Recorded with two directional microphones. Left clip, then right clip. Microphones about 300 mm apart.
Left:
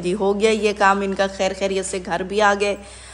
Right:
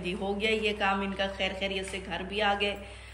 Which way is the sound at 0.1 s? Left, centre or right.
Left.